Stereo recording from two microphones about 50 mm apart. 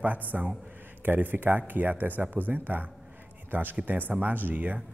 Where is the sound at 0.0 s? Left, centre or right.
Right.